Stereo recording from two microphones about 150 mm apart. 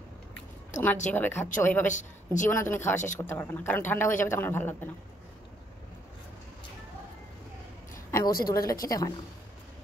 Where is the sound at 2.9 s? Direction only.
55° left (ahead or behind).